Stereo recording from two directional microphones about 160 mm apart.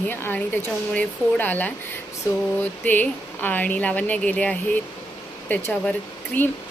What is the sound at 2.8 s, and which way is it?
A woman's voice, 10° left (ahead or behind).